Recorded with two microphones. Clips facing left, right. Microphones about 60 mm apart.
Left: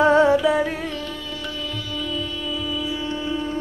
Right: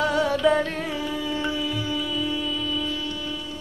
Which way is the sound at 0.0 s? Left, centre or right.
Left.